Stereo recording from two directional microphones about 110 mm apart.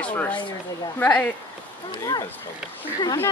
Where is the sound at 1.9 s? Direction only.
35° left (ahead or behind).